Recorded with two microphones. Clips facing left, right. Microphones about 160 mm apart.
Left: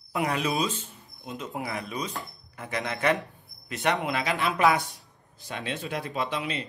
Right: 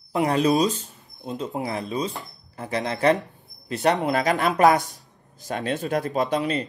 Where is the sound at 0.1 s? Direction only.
35° right (ahead or behind).